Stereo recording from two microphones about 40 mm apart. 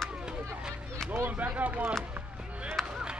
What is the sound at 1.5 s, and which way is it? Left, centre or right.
Speech, right.